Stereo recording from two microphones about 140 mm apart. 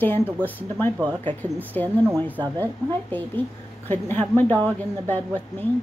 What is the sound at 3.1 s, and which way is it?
Speech, 10° left (ahead or behind).